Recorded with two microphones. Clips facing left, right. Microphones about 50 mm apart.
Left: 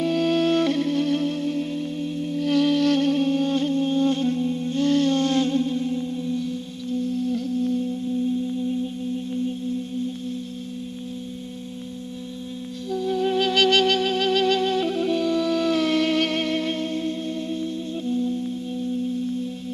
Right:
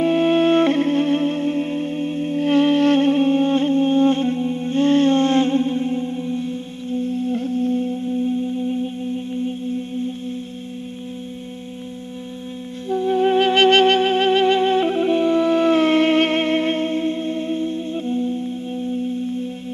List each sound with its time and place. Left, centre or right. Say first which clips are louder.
0.0 s music: right 5 dB; right
12.9 s music: right 6 dB; right